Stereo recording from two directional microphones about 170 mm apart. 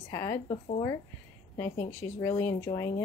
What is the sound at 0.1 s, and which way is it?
Speech, 15° left (ahead or behind).